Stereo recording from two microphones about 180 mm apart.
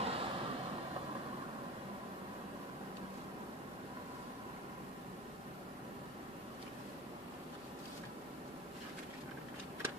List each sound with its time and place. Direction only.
0.0 s vehicle: 35° right (ahead or behind)